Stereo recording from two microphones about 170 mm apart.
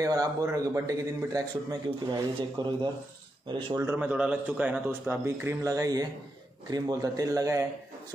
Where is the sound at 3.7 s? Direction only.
15° right (ahead or behind).